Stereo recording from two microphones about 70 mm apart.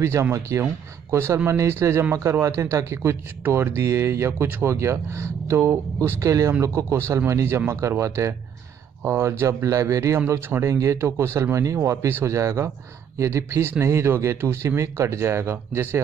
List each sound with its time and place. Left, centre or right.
0.0 s speech: right
4.3 s speech: right
4.6 s speech: right
9.9 s speech: right
12.1 s speech: right
12.4 s speech: right